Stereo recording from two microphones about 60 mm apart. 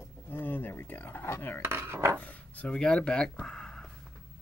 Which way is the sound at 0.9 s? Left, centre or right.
Left.